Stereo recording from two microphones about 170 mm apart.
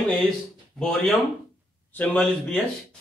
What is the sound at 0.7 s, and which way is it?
A man's voice, centre (ahead or behind).